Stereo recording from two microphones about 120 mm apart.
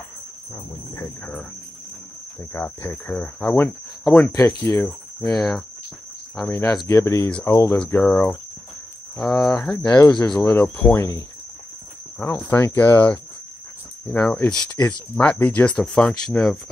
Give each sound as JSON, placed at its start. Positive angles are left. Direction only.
{"t": 2.5, "sound": "speech", "side_deg": 15}
{"t": 4.3, "sound": "speech", "side_deg": 25}
{"t": 4.8, "sound": "speech", "side_deg": 5}
{"t": 6.9, "sound": "speech", "side_deg": 25}
{"t": 10.4, "sound": "speech", "side_deg": 20}
{"t": 12.4, "sound": "speech", "side_deg": 15}